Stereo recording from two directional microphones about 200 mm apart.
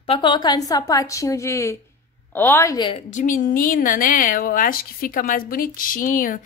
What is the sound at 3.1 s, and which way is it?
A woman's voice, 40° left (ahead or behind).